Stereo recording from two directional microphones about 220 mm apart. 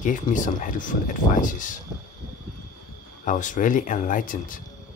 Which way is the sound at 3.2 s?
35° left (ahead or behind).